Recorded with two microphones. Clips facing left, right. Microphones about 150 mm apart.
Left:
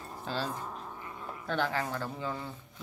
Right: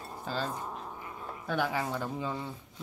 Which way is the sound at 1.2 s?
10° right (ahead or behind).